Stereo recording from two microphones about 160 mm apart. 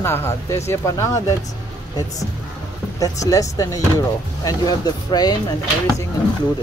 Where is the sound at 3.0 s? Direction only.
20° left (ahead or behind).